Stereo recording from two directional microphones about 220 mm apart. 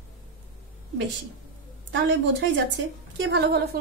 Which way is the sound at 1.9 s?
55° right (ahead or behind).